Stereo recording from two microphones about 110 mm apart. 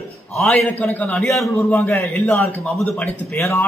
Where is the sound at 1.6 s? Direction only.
20° left (ahead or behind).